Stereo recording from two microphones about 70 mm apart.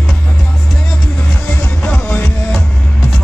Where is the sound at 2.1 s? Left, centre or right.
Left.